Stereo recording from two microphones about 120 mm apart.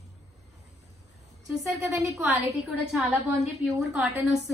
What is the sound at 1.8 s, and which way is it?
Speech, 25° right (ahead or behind).